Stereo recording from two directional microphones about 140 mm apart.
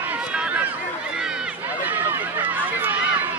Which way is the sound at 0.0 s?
10° right (ahead or behind).